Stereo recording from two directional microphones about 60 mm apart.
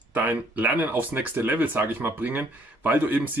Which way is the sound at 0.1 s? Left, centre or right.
Right.